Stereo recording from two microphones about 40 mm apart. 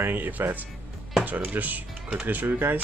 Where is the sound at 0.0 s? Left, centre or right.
Right.